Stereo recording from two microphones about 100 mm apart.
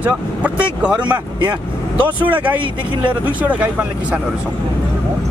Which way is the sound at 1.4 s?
50° right (ahead or behind).